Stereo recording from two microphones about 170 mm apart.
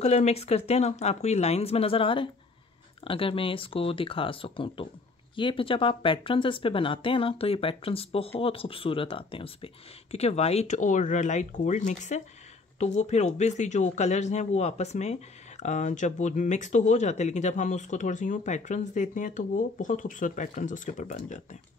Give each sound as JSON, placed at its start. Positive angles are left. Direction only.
{"t": 0.0, "sound": "speech", "side_deg": 40}